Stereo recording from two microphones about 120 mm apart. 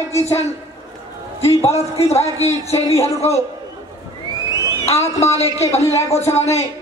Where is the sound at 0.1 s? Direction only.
65° left (ahead or behind).